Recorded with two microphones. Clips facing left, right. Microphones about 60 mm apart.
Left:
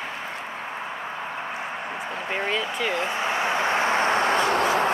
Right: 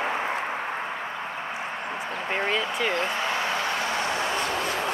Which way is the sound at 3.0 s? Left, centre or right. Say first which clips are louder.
Left 2 dB; left.